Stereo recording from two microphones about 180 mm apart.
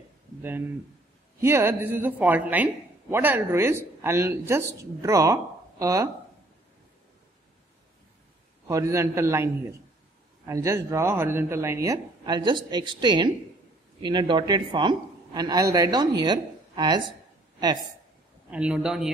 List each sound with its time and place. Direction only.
0.4 s a woman's voice: 10° right (ahead or behind)
8.6 s a woman's voice: 15° right (ahead or behind)
18.5 s a man's voice: 5° right (ahead or behind)